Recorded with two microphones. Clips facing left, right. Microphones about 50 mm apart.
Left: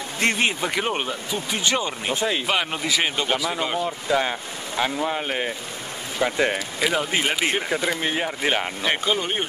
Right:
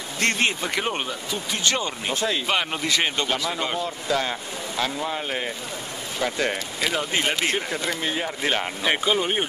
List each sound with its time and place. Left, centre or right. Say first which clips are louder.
0.2 s speech: left 1 dB; centre
2.4 s speech: left 1 dB; centre
3.8 s speech: left 2 dB; centre
6.8 s speech: left 2 dB; centre
8.8 s speech: right 3 dB; centre